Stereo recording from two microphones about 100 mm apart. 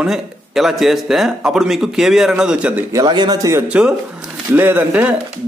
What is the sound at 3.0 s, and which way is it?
Speech, 45° right (ahead or behind).